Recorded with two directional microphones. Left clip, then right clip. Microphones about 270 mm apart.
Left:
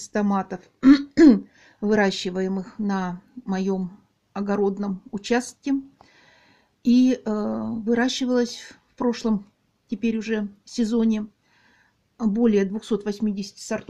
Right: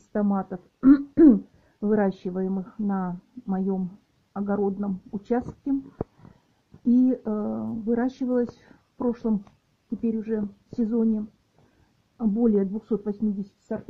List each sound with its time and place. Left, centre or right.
0.1 s speech: left
7.1 s speech: left